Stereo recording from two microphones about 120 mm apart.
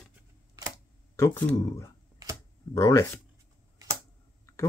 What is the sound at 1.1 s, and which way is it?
Speech, 20° left (ahead or behind).